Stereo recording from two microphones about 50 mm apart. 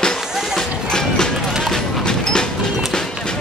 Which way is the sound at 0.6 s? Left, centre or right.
Centre.